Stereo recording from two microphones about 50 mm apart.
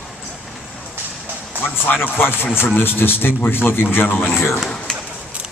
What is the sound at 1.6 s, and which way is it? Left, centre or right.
A man's voice, left.